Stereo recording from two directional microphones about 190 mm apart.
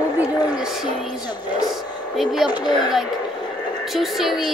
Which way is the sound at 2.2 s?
Centre (ahead or behind).